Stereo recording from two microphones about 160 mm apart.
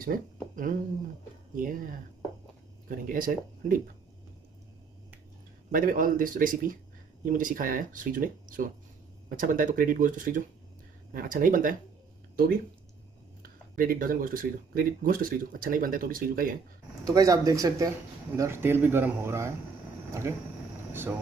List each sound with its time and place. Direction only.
0.0 s speech: 60° right (ahead or behind)
3.1 s speech: 60° right (ahead or behind)
5.7 s speech: 60° right (ahead or behind)
13.4 s speech: 65° right (ahead or behind)
17.0 s speech: 20° right (ahead or behind)
20.1 s a sound: 20° right (ahead or behind)